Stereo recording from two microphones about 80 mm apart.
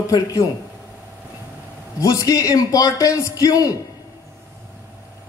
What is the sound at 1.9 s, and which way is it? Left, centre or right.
Speech, left.